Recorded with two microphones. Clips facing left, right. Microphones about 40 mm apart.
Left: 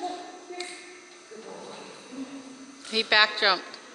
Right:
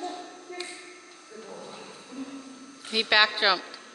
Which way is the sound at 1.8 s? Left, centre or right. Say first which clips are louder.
Even; left.